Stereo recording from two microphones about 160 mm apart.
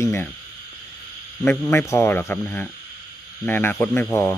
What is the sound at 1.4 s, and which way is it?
Speech, 15° left (ahead or behind).